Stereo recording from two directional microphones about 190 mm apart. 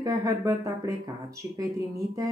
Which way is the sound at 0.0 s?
15° right (ahead or behind).